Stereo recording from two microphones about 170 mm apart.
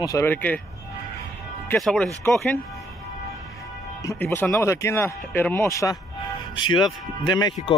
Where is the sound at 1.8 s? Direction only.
5° left (ahead or behind).